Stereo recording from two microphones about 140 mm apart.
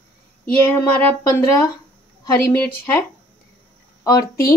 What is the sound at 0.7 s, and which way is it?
A woman's voice, 25° left (ahead or behind).